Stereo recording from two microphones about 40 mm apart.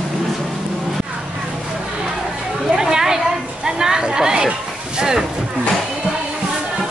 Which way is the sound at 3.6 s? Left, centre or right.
Centre.